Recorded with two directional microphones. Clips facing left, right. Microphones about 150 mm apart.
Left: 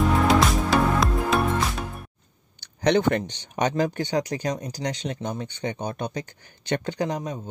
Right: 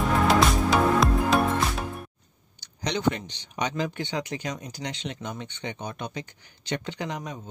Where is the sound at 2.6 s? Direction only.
55° left (ahead or behind).